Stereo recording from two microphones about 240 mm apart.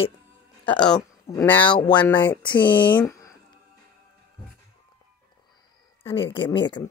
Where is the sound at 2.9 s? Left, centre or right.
Centre.